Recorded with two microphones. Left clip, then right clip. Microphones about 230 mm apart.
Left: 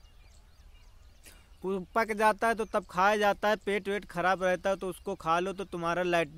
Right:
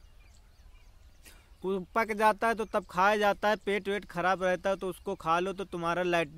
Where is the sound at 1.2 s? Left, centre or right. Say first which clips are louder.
Right 1 dB; centre.